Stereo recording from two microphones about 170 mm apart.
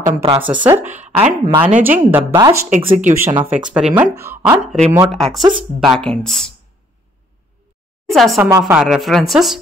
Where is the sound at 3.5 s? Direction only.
5° right (ahead or behind).